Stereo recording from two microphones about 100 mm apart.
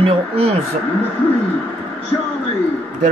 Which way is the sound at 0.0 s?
75° right (ahead or behind).